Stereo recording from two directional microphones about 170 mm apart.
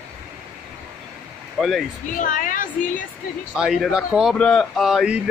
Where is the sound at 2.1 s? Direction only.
50° left (ahead or behind).